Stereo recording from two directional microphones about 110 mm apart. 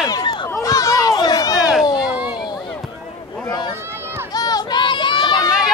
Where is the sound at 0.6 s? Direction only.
30° left (ahead or behind).